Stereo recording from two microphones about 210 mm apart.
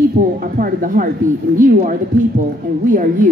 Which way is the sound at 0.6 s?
40° right (ahead or behind).